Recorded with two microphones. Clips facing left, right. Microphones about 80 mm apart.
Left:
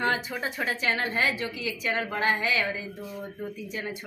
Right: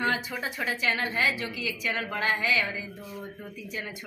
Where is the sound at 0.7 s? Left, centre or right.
Left.